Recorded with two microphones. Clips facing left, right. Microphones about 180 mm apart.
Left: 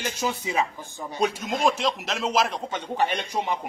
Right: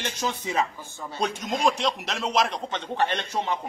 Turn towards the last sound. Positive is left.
turn(degrees=10)  # may be behind; listen again after turning